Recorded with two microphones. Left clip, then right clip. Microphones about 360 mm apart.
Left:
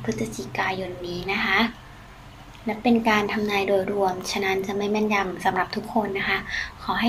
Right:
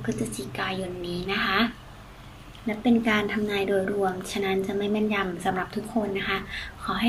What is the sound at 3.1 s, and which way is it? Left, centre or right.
A woman's voice, centre.